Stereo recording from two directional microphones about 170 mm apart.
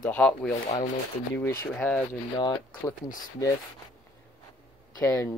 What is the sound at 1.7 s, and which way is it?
Speech, 10° left (ahead or behind).